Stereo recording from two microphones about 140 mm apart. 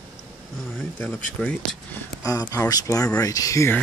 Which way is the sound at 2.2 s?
25° left (ahead or behind).